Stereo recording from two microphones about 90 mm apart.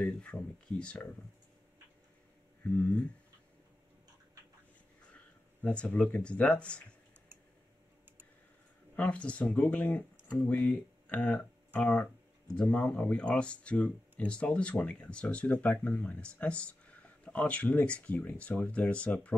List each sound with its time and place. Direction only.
0.0 s speech: 15° left (ahead or behind)
2.6 s speech: 20° left (ahead or behind)
5.1 s speech: 15° left (ahead or behind)
8.9 s speech: 15° left (ahead or behind)